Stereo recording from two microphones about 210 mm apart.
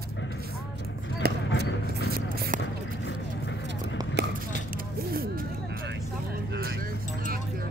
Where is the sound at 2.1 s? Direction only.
45° right (ahead or behind).